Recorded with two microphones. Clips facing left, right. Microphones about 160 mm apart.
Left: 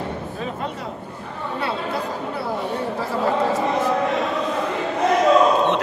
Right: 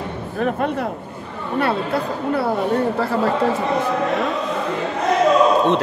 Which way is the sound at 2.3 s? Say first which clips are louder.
Right 8 dB; 60° right (ahead or behind).